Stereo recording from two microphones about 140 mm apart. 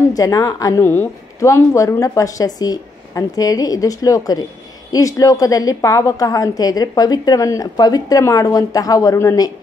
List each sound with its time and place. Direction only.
0.1 s a woman's voice: 25° left (ahead or behind)